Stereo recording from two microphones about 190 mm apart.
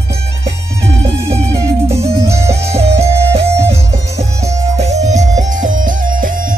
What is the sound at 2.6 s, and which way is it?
Music, 35° right (ahead or behind).